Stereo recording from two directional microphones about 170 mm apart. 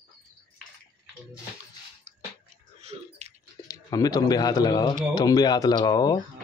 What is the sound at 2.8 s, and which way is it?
Bathtub, 40° right (ahead or behind).